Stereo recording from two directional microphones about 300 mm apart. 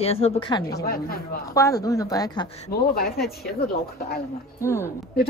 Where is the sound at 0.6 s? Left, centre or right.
Left.